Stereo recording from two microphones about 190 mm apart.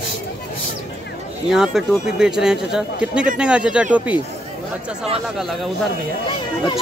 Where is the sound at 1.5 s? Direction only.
Centre (ahead or behind).